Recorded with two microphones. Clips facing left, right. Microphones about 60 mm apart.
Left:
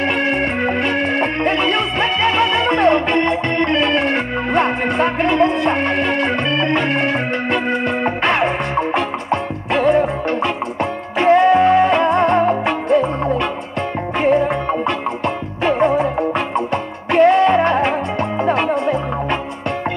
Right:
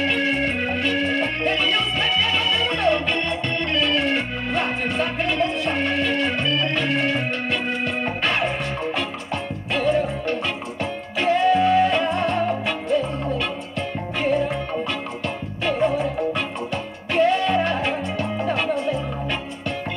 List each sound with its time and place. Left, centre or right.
0.0 s music: left